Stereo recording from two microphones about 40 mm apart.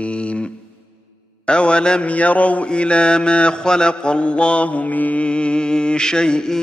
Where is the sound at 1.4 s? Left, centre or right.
Left.